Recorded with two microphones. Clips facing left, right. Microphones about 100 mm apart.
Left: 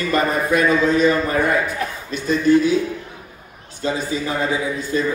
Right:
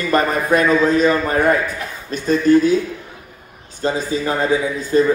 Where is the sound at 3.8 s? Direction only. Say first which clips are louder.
Right 3 dB; 40° right (ahead or behind).